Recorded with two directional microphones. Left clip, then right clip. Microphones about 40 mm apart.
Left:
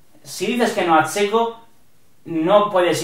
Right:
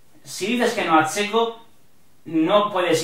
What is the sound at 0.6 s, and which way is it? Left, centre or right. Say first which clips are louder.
Speech: left 3 dB; centre.